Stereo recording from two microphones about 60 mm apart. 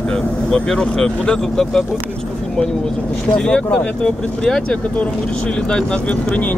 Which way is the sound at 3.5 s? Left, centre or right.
Centre.